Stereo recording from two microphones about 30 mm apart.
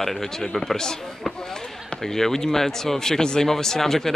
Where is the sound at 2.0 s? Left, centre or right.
Centre.